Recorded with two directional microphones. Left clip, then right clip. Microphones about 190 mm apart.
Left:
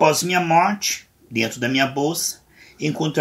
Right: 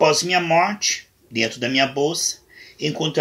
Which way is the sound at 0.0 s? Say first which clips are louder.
Even; centre (ahead or behind).